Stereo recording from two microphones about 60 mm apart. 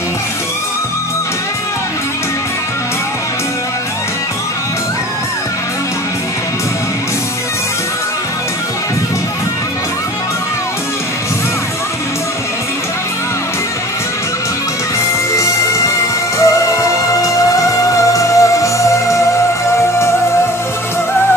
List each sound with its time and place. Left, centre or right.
15.3 s music: left